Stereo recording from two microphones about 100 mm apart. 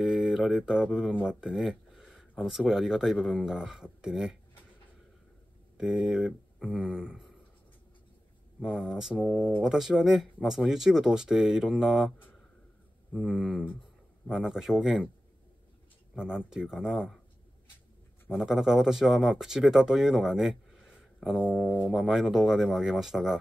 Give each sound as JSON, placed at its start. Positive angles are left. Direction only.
{"t": 0.0, "sound": "speech", "side_deg": -5}
{"t": 5.8, "sound": "speech", "side_deg": -5}
{"t": 8.5, "sound": "speech", "side_deg": -5}
{"t": 13.1, "sound": "speech", "side_deg": -5}
{"t": 16.2, "sound": "speech", "side_deg": -10}
{"t": 18.4, "sound": "speech", "side_deg": -5}
{"t": 21.5, "sound": "speech", "side_deg": 15}
{"t": 21.9, "sound": "speech", "side_deg": -5}